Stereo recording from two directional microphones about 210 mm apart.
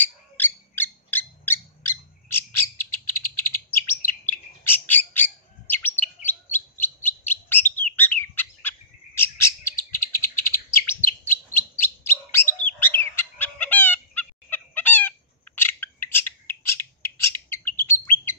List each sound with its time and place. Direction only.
0.0 s owl: 10° left (ahead or behind)
2.8 s bird: 10° left (ahead or behind)
5.7 s chirp: 10° left (ahead or behind)
9.9 s bird: 10° left (ahead or behind)
12.6 s fowl: 10° left (ahead or behind)
17.5 s bird: 10° left (ahead or behind)